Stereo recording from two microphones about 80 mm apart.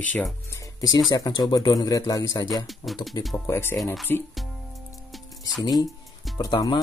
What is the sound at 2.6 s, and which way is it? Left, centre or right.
Speech, centre.